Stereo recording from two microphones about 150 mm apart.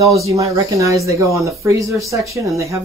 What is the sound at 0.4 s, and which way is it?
Speech, 20° right (ahead or behind).